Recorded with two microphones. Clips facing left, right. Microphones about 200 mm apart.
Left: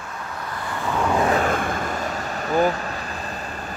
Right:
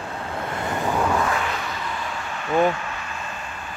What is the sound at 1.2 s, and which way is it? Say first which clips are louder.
Vehicle: left 5 dB; 40° left (ahead or behind).